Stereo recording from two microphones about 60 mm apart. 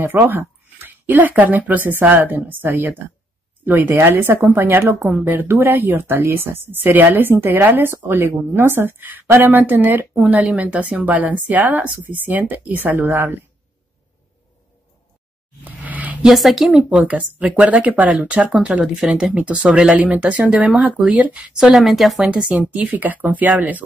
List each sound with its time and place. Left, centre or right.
0.0 s a woman's voice: right
10.2 s a woman's voice: centre; by 13.4 s right
15.6 s a sound: right
16.2 s speech: centre
16.9 s a woman's voice: right
18.9 s speech: centre
19.3 s a woman's voice: right
21.5 s speech: centre
22.2 s speech: centre
22.7 s a woman's voice: right